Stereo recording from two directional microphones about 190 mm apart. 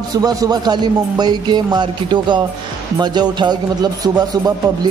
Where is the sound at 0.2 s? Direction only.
20° right (ahead or behind).